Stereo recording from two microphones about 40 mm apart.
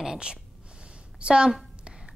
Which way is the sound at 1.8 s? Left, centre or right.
Right.